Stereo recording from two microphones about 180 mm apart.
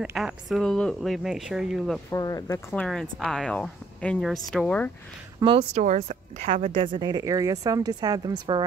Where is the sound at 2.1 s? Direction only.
20° left (ahead or behind).